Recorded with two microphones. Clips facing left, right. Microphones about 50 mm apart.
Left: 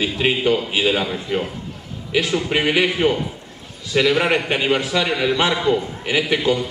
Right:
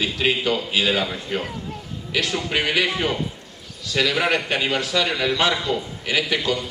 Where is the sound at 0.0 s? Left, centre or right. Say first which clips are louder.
Left 3 dB; left.